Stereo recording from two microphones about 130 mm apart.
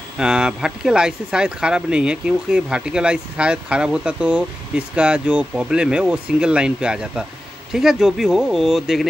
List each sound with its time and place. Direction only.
0.2 s speech: 5° right (ahead or behind)